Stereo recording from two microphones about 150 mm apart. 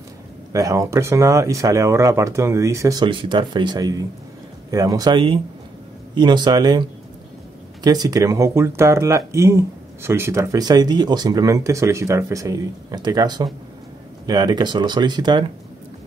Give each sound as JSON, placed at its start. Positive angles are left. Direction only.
{"t": 0.5, "sound": "speech", "side_deg": -20}